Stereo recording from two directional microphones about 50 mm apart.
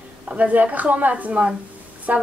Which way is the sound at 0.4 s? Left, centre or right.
Right.